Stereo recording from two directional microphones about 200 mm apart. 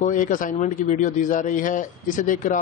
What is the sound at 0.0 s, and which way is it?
A man's voice, 40° left (ahead or behind).